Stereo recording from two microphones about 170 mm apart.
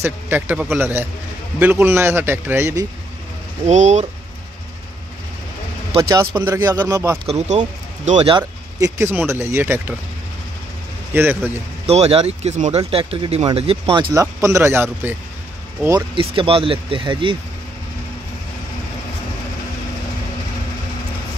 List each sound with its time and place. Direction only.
0.0 s speech: 10° right (ahead or behind)
3.6 s speech: 45° right (ahead or behind)
5.9 s speech: 25° right (ahead or behind)
7.2 s speech: 40° right (ahead or behind)
8.3 s speech: 25° right (ahead or behind)
11.1 s speech: 10° right (ahead or behind)
11.8 s speech: 40° right (ahead or behind)
14.1 s speech: 15° right (ahead or behind)
16.2 s speech: 30° right (ahead or behind)